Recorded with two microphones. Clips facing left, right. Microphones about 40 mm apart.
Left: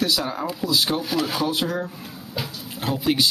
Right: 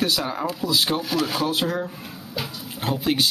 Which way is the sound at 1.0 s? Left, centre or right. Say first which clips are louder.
Even; centre.